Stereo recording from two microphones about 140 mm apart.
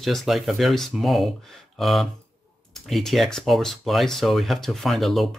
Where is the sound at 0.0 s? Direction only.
Centre (ahead or behind).